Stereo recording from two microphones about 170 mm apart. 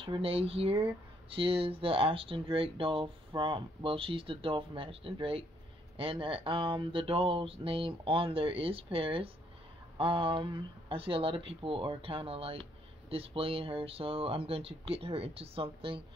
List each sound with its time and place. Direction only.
0.0 s speech: 30° right (ahead or behind)